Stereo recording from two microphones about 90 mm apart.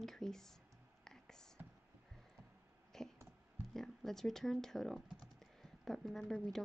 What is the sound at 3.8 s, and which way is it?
Speech, 5° left (ahead or behind).